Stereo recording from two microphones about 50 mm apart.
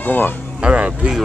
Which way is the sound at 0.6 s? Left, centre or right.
Right.